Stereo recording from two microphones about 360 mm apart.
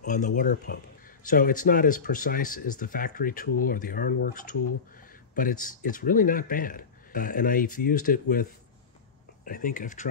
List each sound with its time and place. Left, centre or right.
0.0 s speech: left